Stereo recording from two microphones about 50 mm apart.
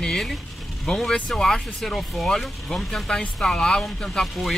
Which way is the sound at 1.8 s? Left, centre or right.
Centre.